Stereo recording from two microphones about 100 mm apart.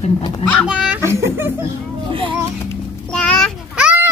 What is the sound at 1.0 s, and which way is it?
Speech, 25° right (ahead or behind).